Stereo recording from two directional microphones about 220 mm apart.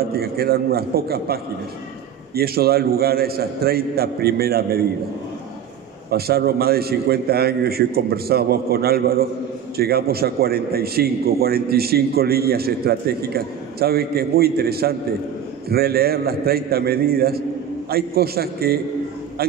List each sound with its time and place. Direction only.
0.1 s a man's voice: 45° right (ahead or behind)
6.0 s a man's voice: 45° right (ahead or behind)